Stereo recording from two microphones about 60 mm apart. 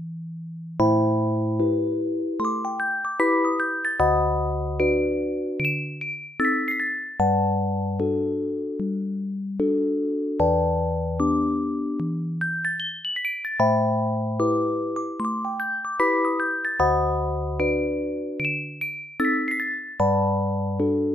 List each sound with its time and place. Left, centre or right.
0.7 s music: centre
2.8 s music: centre; by 4.5 s left
4.7 s music: centre
5.0 s music: left
6.4 s music: centre
7.2 s music: centre
12.0 s music: centre
13.6 s music: centre
16.2 s music: centre
19.1 s music: centre
20.2 s music: left